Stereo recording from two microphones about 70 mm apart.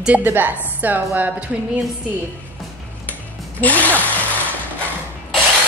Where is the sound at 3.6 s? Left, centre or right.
Left.